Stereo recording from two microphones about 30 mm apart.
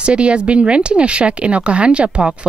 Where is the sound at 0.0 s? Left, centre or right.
Right.